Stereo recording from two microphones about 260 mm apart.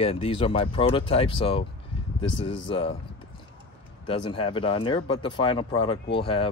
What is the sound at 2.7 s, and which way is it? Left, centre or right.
Speech, left.